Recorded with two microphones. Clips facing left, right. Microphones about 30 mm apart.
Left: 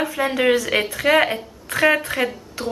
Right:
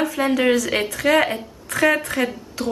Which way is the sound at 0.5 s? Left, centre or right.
Left.